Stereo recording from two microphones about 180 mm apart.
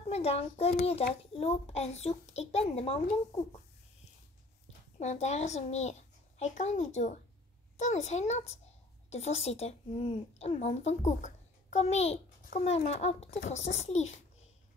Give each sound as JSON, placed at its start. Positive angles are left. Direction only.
{"t": 0.1, "sound": "a child's voice", "side_deg": 35}
{"t": 4.9, "sound": "a child's voice", "side_deg": 40}
{"t": 13.6, "sound": "a child's voice", "side_deg": 90}
{"t": 13.8, "sound": "a child's voice", "side_deg": 40}